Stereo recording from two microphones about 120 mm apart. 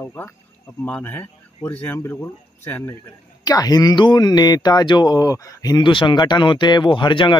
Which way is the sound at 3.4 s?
30° left (ahead or behind).